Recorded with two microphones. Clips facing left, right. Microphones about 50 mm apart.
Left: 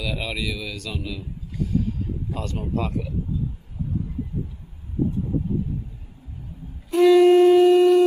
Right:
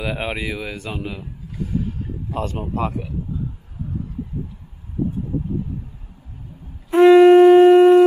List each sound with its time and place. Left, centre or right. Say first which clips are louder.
0.0 s speech: right 3 dB; right
0.7 s speech: right 3 dB; right
2.4 s speech: right 3 dB; right
6.9 s wind instrument: right 5 dB; right